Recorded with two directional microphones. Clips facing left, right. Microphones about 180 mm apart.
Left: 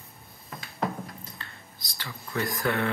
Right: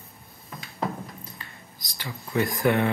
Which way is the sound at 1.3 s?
15° right (ahead or behind).